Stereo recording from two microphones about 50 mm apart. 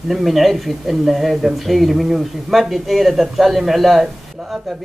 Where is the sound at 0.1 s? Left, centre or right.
Centre.